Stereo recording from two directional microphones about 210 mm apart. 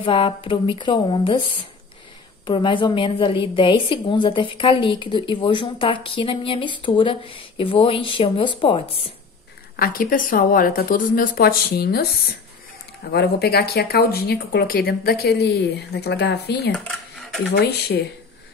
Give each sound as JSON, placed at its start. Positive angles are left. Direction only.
{"t": 0.0, "sound": "a woman's voice", "side_deg": 25}
{"t": 9.8, "sound": "speech", "side_deg": 45}
{"t": 13.1, "sound": "speech", "side_deg": 50}